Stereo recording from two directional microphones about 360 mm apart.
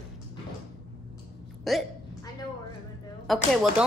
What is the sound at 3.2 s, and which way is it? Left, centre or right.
Speech, centre.